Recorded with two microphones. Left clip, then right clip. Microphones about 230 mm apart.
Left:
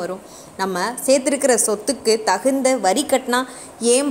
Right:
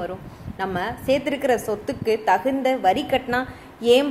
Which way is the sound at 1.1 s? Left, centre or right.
Left.